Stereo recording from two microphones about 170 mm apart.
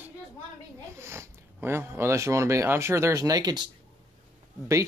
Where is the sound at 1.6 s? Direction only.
15° right (ahead or behind).